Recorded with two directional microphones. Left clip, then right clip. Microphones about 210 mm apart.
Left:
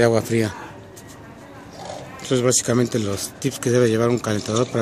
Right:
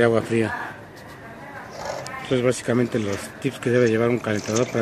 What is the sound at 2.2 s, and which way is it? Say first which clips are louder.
Speech: left 2 dB; 20° left (ahead or behind).